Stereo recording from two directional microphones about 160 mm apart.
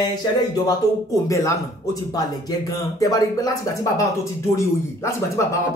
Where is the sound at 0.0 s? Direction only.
25° left (ahead or behind).